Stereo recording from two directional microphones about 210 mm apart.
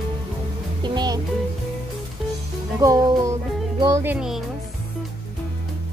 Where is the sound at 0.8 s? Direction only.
20° right (ahead or behind).